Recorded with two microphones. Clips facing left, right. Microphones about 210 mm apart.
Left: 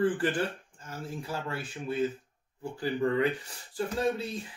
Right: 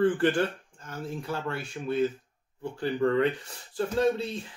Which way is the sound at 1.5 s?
5° left (ahead or behind).